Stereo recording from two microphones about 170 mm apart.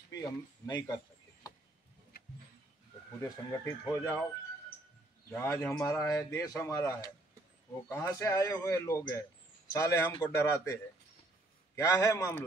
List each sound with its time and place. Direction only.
0.1 s speech: 25° left (ahead or behind)
3.2 s speech: 15° left (ahead or behind)
5.3 s speech: 15° left (ahead or behind)